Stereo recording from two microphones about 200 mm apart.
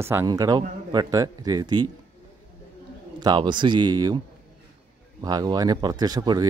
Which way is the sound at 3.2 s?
20° right (ahead or behind).